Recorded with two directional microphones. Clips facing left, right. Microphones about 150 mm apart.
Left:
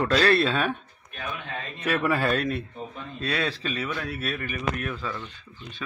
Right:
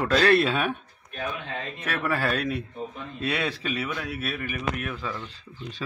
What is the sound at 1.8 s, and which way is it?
Speech, centre (ahead or behind).